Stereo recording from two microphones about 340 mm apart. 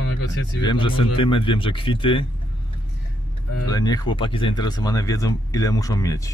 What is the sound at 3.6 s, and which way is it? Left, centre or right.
Speech, centre.